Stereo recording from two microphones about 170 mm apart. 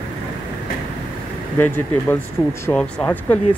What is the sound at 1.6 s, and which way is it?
Speech, 15° left (ahead or behind).